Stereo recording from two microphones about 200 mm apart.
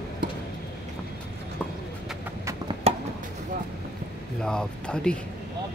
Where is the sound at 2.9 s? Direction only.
30° right (ahead or behind).